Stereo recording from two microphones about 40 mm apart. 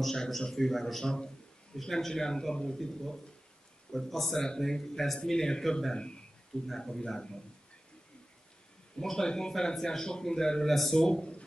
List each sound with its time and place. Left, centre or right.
0.0 s speech: centre
1.0 s speech: left
1.8 s a man's voice: centre
9.1 s speech: centre
10.7 s a man's voice: centre
11.0 s speech: centre